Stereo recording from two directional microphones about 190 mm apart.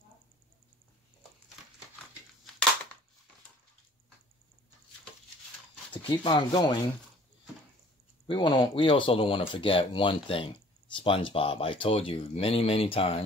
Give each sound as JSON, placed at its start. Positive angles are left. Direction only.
{"t": 6.2, "sound": "speech", "side_deg": 25}
{"t": 8.3, "sound": "speech", "side_deg": 25}